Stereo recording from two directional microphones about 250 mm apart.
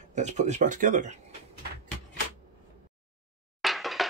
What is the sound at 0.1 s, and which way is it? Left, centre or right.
Speech, right.